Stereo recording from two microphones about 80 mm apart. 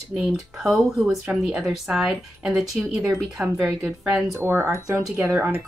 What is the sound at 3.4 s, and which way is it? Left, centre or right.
Speech, right.